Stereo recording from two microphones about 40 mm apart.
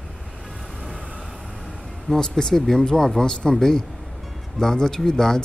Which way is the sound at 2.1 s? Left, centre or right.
Centre.